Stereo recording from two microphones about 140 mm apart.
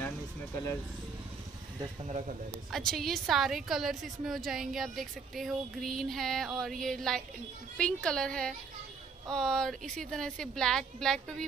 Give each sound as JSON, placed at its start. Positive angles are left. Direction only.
{"t": 2.0, "sound": "speech", "side_deg": -55}
{"t": 2.7, "sound": "a woman's voice", "side_deg": 0}